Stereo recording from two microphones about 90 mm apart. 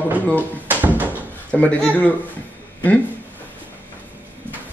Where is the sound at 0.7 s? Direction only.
20° right (ahead or behind).